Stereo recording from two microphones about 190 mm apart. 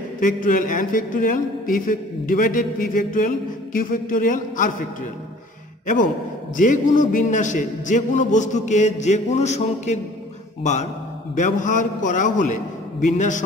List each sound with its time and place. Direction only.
0.2 s a man's voice: 45° left (ahead or behind)
6.5 s a man's voice: 45° left (ahead or behind)